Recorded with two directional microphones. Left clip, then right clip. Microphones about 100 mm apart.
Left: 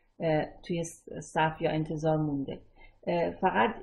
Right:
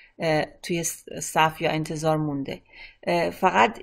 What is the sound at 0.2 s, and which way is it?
Speech, 20° right (ahead or behind).